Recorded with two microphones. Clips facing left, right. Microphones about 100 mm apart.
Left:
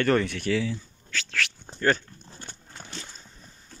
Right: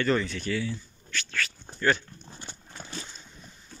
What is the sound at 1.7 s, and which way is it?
Speech, 40° left (ahead or behind).